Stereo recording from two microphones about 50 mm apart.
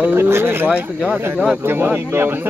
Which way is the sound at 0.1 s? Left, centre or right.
Right.